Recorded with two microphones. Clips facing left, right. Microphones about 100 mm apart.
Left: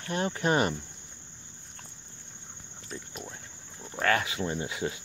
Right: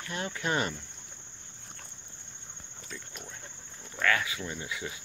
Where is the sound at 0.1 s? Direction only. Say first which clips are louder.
Left 5 dB; 35° left (ahead or behind).